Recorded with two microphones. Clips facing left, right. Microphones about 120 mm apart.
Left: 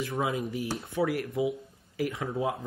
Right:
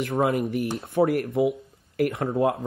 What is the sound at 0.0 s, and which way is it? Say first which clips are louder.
Speech: right 7 dB; 60° right (ahead or behind).